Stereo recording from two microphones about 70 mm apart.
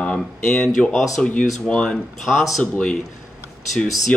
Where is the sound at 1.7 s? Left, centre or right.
Centre.